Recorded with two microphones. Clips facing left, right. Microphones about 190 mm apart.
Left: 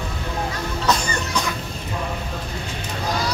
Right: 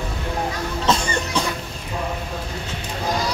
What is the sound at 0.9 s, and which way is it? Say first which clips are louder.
Music: right 1 dB; 25° right (ahead or behind).